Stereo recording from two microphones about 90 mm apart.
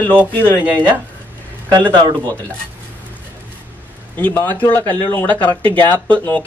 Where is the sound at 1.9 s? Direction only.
50° right (ahead or behind).